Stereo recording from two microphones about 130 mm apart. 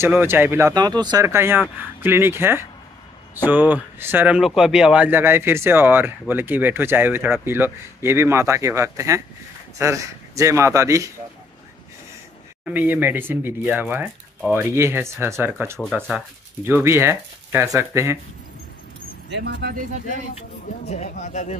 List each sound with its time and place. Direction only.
0.0 s speech: 15° right (ahead or behind)
0.7 s speech: 35° right (ahead or behind)
1.2 s a man's voice: 20° right (ahead or behind)
4.4 s a man's voice: 5° right (ahead or behind); by 11.1 s 25° right (ahead or behind)
12.6 s a man's voice: 15° right (ahead or behind)
20.8 s speech: 60° left (ahead or behind)